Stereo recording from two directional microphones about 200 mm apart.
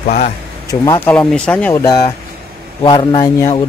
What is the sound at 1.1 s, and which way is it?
Speech, 5° left (ahead or behind).